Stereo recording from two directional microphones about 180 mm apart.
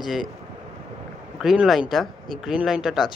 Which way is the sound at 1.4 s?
Centre (ahead or behind).